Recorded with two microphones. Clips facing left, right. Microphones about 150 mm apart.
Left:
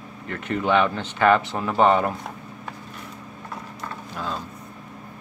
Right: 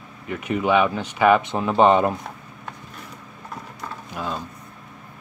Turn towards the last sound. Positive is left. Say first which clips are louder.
# right 1 dB
turn(degrees=-5)  # may be behind; listen again after turning